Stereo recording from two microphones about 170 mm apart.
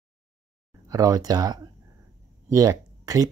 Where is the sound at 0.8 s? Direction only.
20° right (ahead or behind).